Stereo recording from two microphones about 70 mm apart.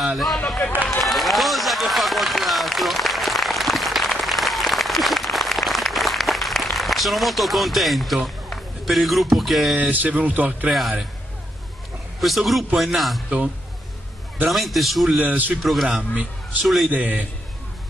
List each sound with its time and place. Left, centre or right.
0.0 s a man's voice: centre
1.0 s run: centre
9.8 s speech: right
10.7 s a man's voice: centre
12.2 s a man's voice: centre
14.5 s a man's voice: centre
15.2 s speech: right
15.6 s a man's voice: centre
16.9 s speech: right